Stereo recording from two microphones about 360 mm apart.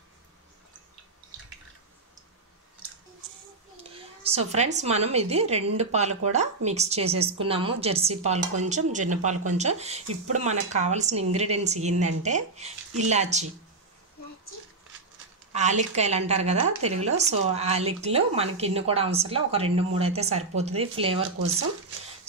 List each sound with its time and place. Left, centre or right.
3.9 s a woman's voice: centre
15.5 s a woman's voice: centre